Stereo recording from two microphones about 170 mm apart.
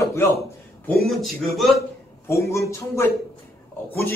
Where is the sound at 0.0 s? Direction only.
15° left (ahead or behind).